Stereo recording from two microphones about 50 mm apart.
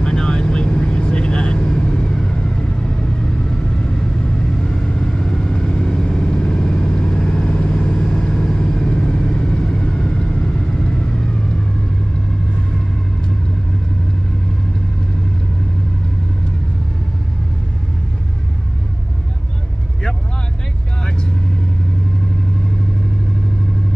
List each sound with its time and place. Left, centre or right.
0.0 s vehicle: centre